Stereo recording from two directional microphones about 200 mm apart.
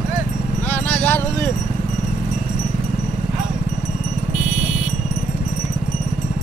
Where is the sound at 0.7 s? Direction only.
10° left (ahead or behind).